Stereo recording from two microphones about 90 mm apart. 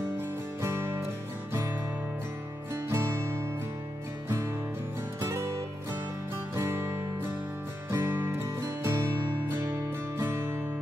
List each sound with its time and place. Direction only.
0.2 s music: 30° right (ahead or behind)
4.3 s music: 25° right (ahead or behind)